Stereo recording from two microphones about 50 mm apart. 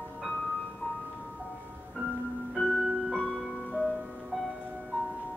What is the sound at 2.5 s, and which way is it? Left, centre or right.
Music, centre.